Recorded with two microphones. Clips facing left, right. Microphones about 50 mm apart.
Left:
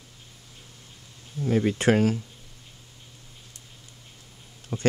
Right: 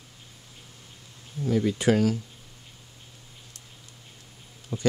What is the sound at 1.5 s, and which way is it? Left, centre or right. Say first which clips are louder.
Speech: left 1 dB; left.